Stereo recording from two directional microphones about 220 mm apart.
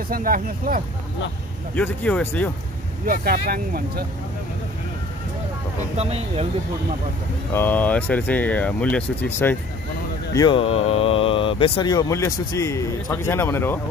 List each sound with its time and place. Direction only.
0.1 s speech: 40° right (ahead or behind)
1.8 s speech: 5° left (ahead or behind)
3.1 s speech: 45° right (ahead or behind)
7.5 s speech: 10° left (ahead or behind)
10.3 s speech: 20° left (ahead or behind)